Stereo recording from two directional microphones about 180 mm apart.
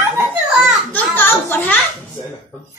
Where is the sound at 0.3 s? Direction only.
5° right (ahead or behind).